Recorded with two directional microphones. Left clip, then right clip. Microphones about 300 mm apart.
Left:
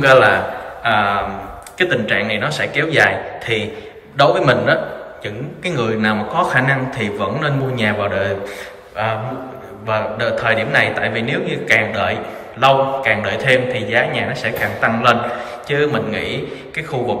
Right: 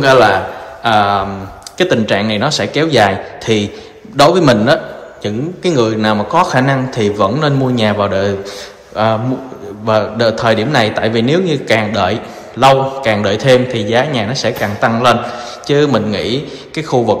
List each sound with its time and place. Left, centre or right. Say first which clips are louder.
0.0 s a man's voice: right 2 dB; centre